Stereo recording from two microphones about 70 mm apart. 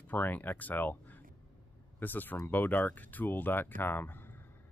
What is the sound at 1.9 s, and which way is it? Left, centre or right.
Speech, left.